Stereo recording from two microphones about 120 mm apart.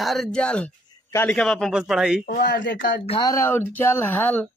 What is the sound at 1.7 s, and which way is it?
Speech, 5° right (ahead or behind).